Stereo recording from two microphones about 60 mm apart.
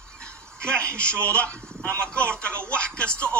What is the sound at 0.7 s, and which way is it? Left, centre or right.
A man's voice, right.